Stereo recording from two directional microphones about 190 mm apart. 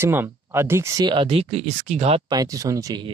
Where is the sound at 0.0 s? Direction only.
10° right (ahead or behind).